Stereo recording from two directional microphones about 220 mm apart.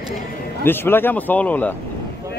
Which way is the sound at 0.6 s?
10° left (ahead or behind).